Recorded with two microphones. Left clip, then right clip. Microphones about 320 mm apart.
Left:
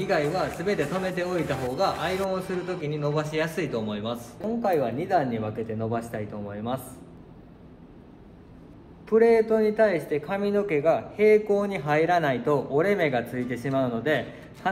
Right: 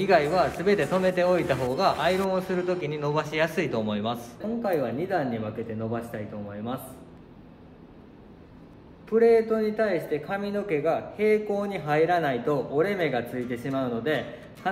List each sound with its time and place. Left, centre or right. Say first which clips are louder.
0.0 s a man's voice: right 4 dB; right
4.6 s a man's voice: left 2 dB; centre
9.1 s a man's voice: left 1 dB; centre